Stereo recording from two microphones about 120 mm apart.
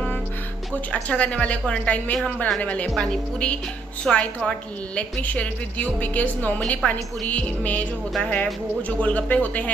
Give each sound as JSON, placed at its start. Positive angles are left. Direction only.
{"t": 0.9, "sound": "a woman's voice", "side_deg": 10}